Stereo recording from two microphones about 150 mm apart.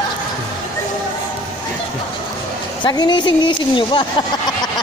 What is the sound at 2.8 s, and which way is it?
A woman's voice, 30° left (ahead or behind).